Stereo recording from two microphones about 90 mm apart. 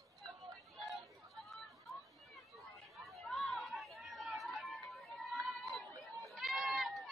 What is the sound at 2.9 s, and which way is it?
Chatter, centre (ahead or behind).